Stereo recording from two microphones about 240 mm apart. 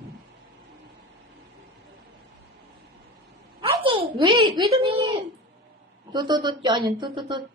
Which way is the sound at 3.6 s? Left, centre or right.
Right.